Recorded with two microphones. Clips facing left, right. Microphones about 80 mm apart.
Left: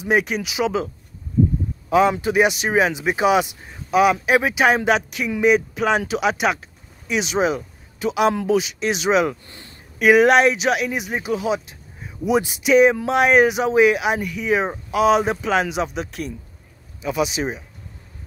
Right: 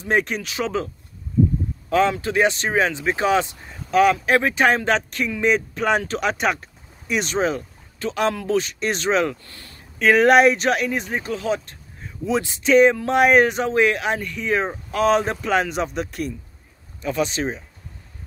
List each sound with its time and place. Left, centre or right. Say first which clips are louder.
0.0 s speech: left 2 dB; centre
9.5 s a sound: left 1 dB; left
9.9 s speech: left 1 dB; centre